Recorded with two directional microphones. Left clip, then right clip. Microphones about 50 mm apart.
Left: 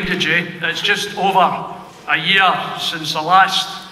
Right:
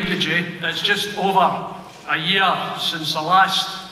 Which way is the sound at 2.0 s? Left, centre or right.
Centre.